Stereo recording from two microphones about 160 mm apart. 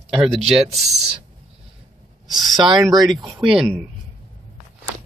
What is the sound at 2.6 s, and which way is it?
Speech, 25° right (ahead or behind).